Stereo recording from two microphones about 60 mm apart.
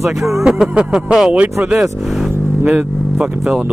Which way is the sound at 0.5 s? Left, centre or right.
Centre.